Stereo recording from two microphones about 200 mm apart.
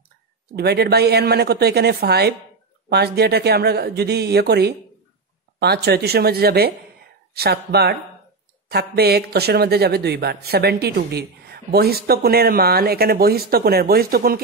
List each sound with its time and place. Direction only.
0.6 s speech: 55° right (ahead or behind)